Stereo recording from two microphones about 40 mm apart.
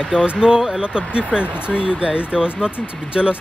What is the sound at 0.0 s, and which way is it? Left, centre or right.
Speech, right.